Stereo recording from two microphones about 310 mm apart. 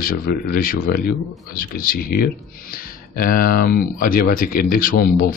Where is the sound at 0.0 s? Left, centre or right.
Left.